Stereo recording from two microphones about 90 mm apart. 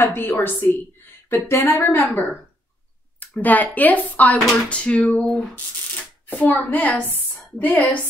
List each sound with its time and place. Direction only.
0.0 s speech: 20° left (ahead or behind)
4.6 s a sound: 15° left (ahead or behind)
6.2 s a woman's voice: 20° left (ahead or behind)